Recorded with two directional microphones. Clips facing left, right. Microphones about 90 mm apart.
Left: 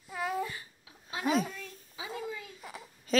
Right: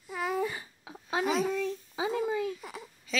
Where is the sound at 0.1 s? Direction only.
Centre (ahead or behind).